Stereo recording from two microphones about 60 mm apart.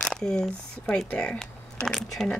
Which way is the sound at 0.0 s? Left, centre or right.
Centre.